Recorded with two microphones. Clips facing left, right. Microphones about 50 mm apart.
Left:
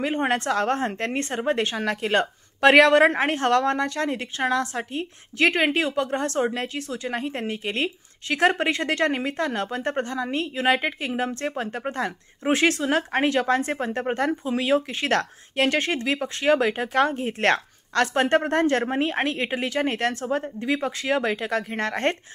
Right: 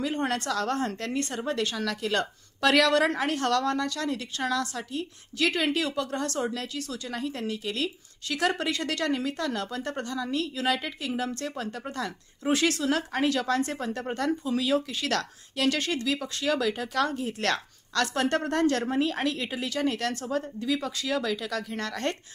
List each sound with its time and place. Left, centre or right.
0.0 s a woman's voice: left